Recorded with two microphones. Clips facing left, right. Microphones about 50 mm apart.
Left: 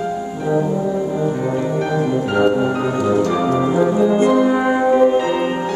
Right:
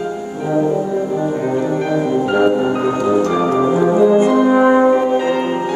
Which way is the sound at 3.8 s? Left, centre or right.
Centre.